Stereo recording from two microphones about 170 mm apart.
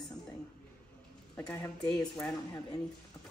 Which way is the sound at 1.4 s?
25° left (ahead or behind).